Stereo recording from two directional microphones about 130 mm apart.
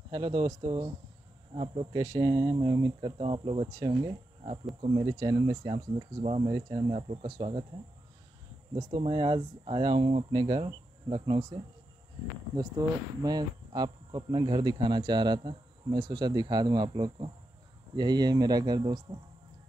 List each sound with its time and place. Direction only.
0.1 s speech: 30° right (ahead or behind)
1.9 s speech: 30° right (ahead or behind); by 3.6 s 45° right (ahead or behind)
3.6 s speech: 30° right (ahead or behind)
4.9 s speech: 30° right (ahead or behind)
6.2 s speech: 50° right (ahead or behind)
6.5 s speech: 35° right (ahead or behind)
9.0 s speech: 40° right (ahead or behind)